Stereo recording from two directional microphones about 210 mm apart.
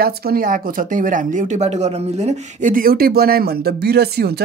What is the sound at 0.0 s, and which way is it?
Speech, 45° right (ahead or behind).